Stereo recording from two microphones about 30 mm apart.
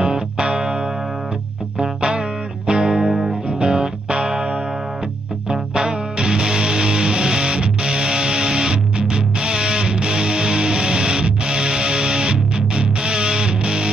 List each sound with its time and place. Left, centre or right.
0.0 s music: right
1.8 s music: right
3.0 s music: right
5.5 s music: right